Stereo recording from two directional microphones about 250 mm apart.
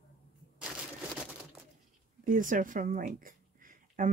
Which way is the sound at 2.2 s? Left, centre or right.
Right.